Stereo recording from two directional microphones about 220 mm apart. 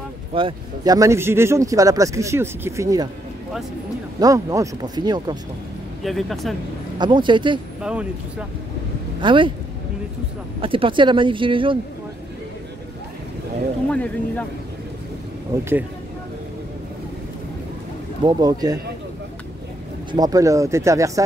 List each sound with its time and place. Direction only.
0.3 s speech: 25° right (ahead or behind)
4.2 s speech: 15° right (ahead or behind)
6.0 s speech: centre (ahead or behind)
7.0 s speech: 20° right (ahead or behind)
7.8 s speech: 5° right (ahead or behind)
9.2 s speech: 20° right (ahead or behind)
10.6 s speech: 25° right (ahead or behind)
13.8 s speech: 5° left (ahead or behind)
15.5 s speech: 15° right (ahead or behind)
18.2 s speech: 20° right (ahead or behind)
20.1 s speech: 15° right (ahead or behind)